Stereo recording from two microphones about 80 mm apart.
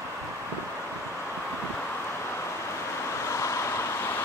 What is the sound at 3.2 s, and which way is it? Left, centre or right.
Vehicle, left.